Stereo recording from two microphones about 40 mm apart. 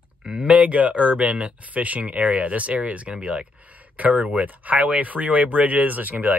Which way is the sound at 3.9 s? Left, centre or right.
Right.